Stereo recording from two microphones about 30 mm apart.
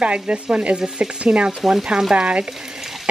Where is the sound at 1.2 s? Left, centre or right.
Right.